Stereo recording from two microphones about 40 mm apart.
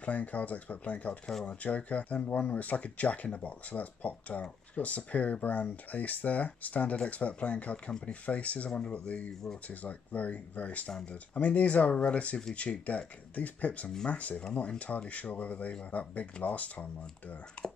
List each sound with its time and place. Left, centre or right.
0.0 s speech: left
13.8 s speech: left
14.1 s speech: left
17.6 s a sound: centre